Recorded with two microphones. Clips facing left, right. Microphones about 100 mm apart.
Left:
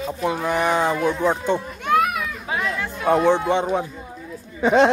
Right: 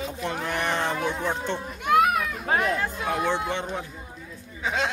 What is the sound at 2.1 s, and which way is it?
Chatter, 45° right (ahead or behind).